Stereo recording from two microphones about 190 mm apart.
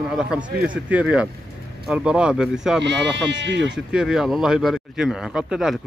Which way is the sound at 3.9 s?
5° right (ahead or behind).